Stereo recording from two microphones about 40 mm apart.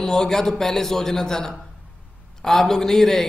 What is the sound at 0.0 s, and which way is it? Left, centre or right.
A man's voice, centre.